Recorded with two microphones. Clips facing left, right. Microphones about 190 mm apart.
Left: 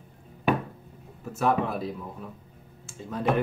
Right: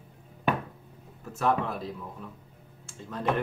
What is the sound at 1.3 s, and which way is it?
Speech, 5° left (ahead or behind).